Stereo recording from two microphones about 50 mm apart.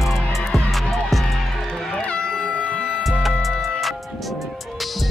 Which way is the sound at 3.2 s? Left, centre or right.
Centre.